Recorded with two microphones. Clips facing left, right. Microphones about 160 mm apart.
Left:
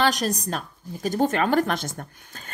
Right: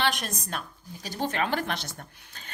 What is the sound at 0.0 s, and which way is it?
A woman's voice, 40° left (ahead or behind).